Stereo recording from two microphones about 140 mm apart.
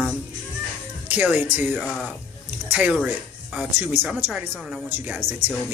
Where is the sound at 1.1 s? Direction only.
10° right (ahead or behind).